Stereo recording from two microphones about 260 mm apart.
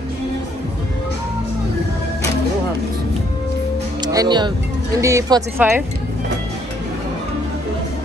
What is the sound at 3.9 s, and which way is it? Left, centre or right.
Music, centre.